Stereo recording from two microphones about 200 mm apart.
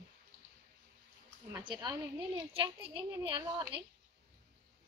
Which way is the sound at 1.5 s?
25° right (ahead or behind).